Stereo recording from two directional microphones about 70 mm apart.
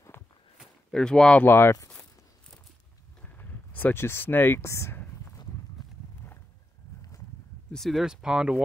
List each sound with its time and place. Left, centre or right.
0.9 s speech: centre
1.4 s speech: left
3.2 s a sound: left
4.0 s speech: left
4.6 s speech: left
7.7 s speech: centre
8.0 s speech: centre